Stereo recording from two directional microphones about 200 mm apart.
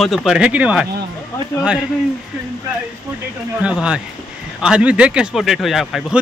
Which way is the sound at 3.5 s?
5° right (ahead or behind).